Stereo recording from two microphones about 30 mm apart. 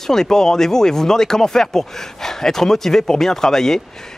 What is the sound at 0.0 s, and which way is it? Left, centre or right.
Speech, centre.